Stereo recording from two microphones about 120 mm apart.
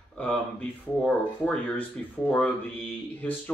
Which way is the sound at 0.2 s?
10° left (ahead or behind).